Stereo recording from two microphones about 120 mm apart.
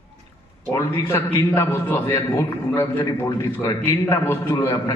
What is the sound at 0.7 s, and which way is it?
A man's voice, 20° left (ahead or behind).